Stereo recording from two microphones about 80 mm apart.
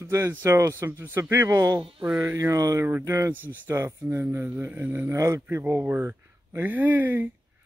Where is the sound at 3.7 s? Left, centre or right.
Right.